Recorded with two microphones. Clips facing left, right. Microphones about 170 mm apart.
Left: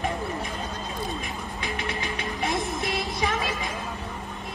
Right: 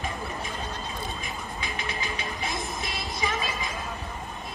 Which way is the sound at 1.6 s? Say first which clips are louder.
Left 4 dB; 65° left (ahead or behind).